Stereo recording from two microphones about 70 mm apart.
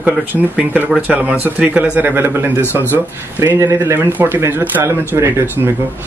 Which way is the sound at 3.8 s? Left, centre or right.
Right.